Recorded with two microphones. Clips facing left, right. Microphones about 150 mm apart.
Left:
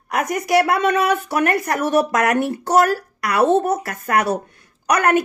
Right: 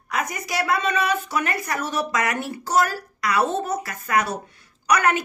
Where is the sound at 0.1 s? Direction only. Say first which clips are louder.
Left 9 dB; 65° left (ahead or behind).